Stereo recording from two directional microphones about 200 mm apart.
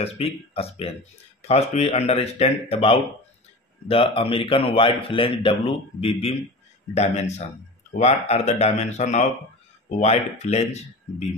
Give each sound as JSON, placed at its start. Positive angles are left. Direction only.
{"t": 0.0, "sound": "speech", "side_deg": 30}